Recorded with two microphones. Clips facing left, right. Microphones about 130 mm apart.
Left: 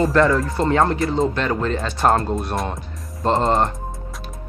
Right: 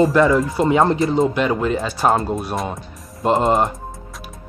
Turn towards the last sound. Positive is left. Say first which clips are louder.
# right 2 dB
turn(degrees=-5)  # may be behind; listen again after turning